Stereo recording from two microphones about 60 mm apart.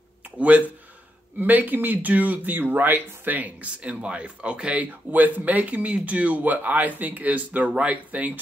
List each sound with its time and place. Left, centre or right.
0.4 s speech: right